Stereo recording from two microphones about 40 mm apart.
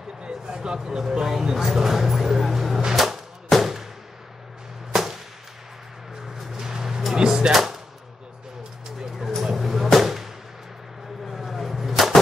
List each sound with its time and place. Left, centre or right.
0.2 s speech: right; by 2.8 s centre
3.0 s music: centre
4.9 s a sound: centre
6.2 s music: centre
9.4 s music: centre
9.9 s artillery fire: centre
11.2 s vehicle: centre